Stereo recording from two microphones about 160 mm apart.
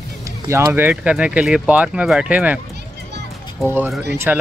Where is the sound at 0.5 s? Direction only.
15° right (ahead or behind).